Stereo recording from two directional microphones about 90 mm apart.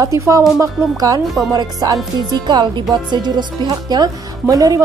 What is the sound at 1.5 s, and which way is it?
Speech, 40° right (ahead or behind).